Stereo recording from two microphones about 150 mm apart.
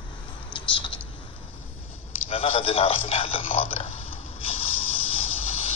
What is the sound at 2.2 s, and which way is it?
Speech, 40° left (ahead or behind).